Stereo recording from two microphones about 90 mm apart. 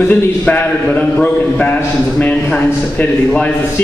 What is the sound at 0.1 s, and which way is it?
A man's voice, 15° left (ahead or behind).